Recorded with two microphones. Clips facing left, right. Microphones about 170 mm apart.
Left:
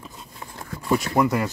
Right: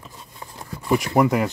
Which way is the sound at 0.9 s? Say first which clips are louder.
Right 2 dB; 20° right (ahead or behind).